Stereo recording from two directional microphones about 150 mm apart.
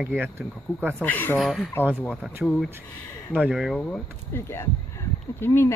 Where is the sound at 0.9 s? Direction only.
10° left (ahead or behind).